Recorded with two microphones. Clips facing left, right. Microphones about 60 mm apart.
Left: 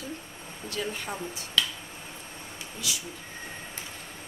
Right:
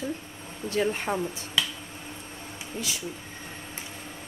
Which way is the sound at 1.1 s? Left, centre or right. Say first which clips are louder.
Right 7 dB; centre.